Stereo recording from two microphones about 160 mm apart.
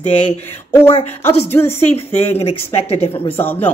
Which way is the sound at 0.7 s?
15° left (ahead or behind).